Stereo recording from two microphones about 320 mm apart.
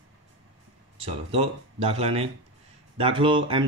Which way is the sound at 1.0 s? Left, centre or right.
Centre.